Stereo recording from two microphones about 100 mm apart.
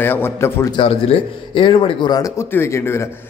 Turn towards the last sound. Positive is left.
turn(degrees=25)  # may be behind; listen again after turning